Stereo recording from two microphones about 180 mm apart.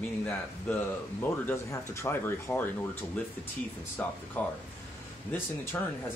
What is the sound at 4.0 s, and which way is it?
Speech, 10° left (ahead or behind).